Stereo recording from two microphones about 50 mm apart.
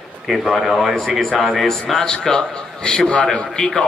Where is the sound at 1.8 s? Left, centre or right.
Centre.